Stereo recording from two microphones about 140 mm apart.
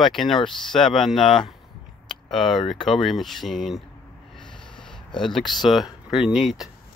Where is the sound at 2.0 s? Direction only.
Centre (ahead or behind).